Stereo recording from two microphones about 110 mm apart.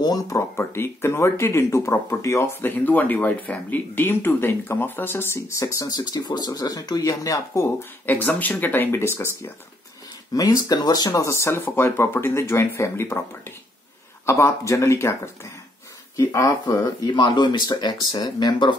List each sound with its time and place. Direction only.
0.0 s speech: 35° left (ahead or behind)
8.1 s speech: 15° left (ahead or behind)
10.3 s speech: 35° left (ahead or behind)